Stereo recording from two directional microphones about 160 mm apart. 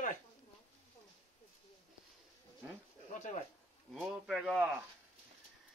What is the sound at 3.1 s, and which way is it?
Speech, 50° left (ahead or behind).